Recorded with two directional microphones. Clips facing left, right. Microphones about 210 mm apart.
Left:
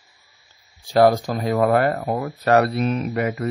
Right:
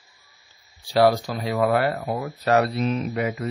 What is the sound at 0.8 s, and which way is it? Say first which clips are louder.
Speech: left 3 dB; 50° left (ahead or behind).